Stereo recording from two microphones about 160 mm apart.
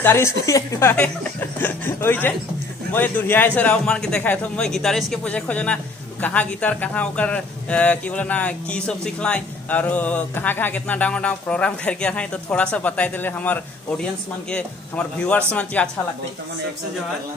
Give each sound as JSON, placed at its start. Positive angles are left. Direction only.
{"t": 0.0, "sound": "speech", "side_deg": 15}